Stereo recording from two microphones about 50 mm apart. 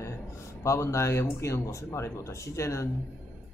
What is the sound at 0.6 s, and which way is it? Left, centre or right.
Speech, left.